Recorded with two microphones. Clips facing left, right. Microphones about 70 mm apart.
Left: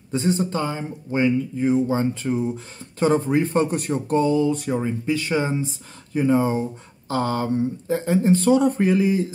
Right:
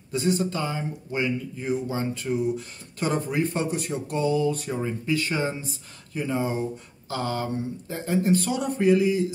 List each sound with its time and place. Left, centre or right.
0.1 s speech: left
3.7 s speech: left